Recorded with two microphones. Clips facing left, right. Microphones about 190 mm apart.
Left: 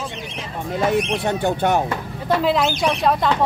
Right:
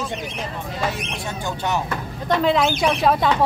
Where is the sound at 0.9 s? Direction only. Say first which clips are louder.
Left 9 dB; 60° left (ahead or behind).